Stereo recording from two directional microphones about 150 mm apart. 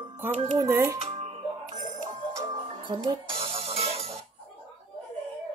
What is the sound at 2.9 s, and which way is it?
Music, 35° right (ahead or behind).